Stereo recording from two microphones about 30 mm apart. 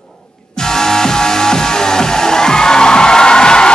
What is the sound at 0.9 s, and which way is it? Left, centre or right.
Music, left.